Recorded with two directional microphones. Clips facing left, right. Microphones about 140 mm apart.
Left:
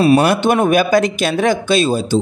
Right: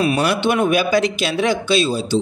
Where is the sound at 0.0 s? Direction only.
45° left (ahead or behind).